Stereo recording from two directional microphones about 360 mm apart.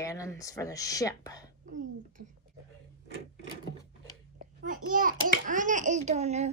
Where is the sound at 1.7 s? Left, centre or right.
Right.